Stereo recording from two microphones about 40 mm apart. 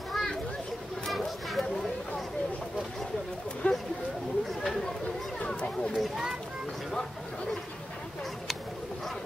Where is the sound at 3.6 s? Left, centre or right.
Left.